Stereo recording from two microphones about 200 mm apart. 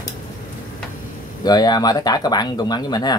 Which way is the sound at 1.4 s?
20° left (ahead or behind).